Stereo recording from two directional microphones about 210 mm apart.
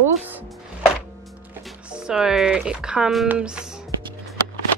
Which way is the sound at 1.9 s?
5° right (ahead or behind).